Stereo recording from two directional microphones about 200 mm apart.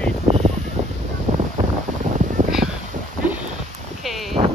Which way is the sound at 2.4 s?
40° right (ahead or behind).